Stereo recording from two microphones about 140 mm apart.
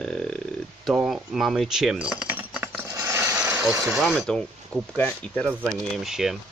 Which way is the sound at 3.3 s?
10° right (ahead or behind).